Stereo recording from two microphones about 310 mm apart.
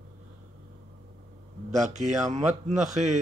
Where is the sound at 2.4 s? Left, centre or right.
Right.